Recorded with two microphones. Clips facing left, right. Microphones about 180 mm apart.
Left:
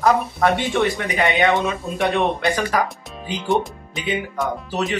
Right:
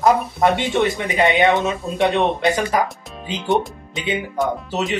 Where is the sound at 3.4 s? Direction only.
Centre (ahead or behind).